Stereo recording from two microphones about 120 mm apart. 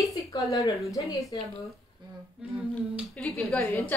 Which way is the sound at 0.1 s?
30° left (ahead or behind).